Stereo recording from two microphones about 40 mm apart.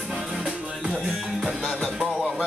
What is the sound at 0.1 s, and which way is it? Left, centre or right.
Music, centre.